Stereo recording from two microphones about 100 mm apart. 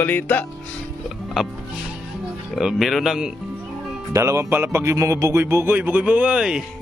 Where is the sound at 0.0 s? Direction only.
20° left (ahead or behind).